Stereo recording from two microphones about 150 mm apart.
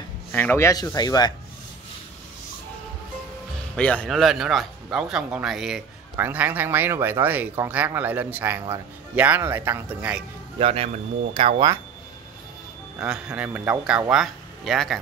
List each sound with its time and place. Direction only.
0.3 s speech: 10° left (ahead or behind)
3.7 s a man's voice: 5° left (ahead or behind); by 10.2 s 10° right (ahead or behind)
10.6 s speech: 40° right (ahead or behind)
13.0 s a man's voice: 5° right (ahead or behind)